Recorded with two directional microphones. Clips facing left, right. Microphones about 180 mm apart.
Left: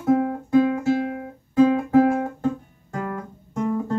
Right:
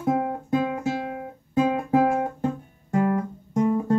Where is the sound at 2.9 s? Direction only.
20° right (ahead or behind).